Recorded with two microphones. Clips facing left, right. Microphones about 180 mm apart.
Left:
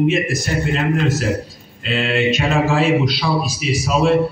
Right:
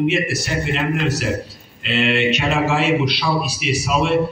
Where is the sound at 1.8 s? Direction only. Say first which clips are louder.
Even; 40° left (ahead or behind).